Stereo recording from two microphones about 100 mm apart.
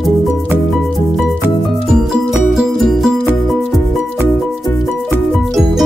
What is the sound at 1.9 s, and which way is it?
Music, 5° right (ahead or behind).